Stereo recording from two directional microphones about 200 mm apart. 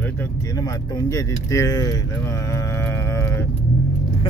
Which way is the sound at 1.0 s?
15° left (ahead or behind).